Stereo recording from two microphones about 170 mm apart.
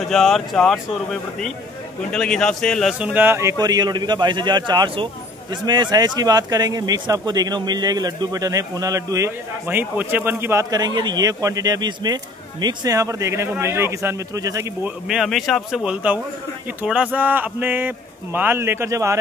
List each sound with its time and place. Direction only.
0.1 s speech: centre (ahead or behind)
2.1 s a man's voice: 5° left (ahead or behind); by 14.9 s 20° right (ahead or behind)
15.0 s speech: centre (ahead or behind); by 19.1 s 15° right (ahead or behind)